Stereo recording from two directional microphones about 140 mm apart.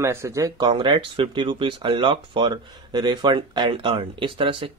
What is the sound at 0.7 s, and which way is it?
Speech, 35° right (ahead or behind).